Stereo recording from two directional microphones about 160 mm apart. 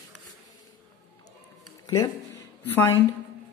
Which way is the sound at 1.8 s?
25° left (ahead or behind).